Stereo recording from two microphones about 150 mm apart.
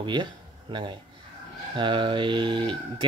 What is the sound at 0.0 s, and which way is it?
Speech, 30° right (ahead or behind).